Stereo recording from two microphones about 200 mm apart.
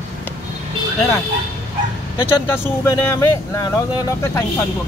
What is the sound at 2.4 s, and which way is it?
Speech, 10° left (ahead or behind).